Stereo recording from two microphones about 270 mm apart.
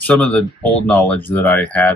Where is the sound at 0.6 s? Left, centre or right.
Centre.